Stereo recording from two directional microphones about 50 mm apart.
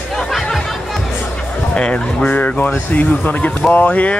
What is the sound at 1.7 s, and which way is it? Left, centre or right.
Speech, centre.